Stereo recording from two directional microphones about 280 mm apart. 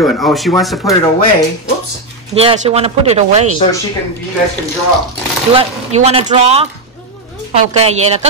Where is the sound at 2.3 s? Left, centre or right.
Right.